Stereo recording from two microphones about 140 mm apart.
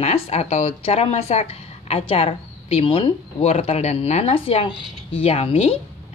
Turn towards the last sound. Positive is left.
turn(degrees=45)  # may be behind; listen again after turning